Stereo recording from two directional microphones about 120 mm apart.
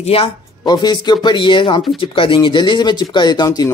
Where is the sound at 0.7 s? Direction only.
35° left (ahead or behind).